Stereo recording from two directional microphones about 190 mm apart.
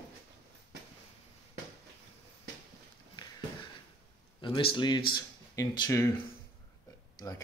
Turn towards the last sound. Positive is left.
turn(degrees=20)  # may be behind; listen again after turning